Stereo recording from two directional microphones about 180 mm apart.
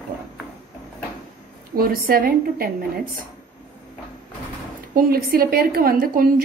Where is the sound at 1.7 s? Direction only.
55° right (ahead or behind).